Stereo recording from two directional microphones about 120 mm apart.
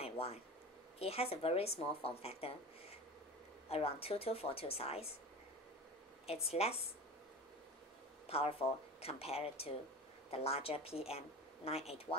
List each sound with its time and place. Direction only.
0.0 s a sound: 55° left (ahead or behind)
0.9 s speech: 55° left (ahead or behind)
6.2 s speech: 55° left (ahead or behind)
8.3 s speech: 55° left (ahead or behind)